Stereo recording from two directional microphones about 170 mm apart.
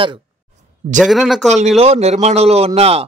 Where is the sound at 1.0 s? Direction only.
Centre (ahead or behind).